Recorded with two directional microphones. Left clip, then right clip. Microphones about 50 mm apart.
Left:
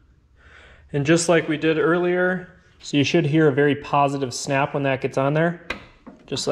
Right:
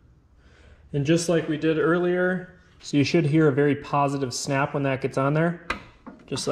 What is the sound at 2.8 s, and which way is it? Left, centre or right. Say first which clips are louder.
Speech: left 2 dB; centre.